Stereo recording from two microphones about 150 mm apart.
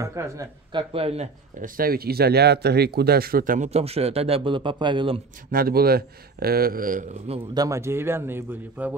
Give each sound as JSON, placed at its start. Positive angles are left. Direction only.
{"t": 0.0, "sound": "speech", "side_deg": -20}
{"t": 0.7, "sound": "speech", "side_deg": -40}
{"t": 1.6, "sound": "speech", "side_deg": -75}
{"t": 5.5, "sound": "speech", "side_deg": -80}
{"t": 7.5, "sound": "a man's voice", "side_deg": -20}